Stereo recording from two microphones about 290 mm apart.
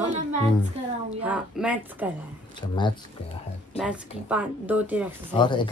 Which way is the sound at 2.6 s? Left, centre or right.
Centre.